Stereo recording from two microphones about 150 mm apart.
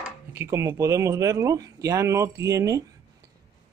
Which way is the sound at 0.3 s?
20° right (ahead or behind).